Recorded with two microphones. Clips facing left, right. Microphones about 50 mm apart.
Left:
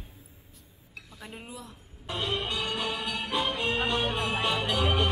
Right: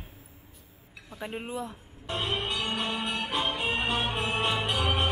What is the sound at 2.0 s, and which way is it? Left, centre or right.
Music, centre.